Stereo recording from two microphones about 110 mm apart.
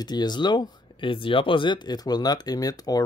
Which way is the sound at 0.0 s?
40° left (ahead or behind).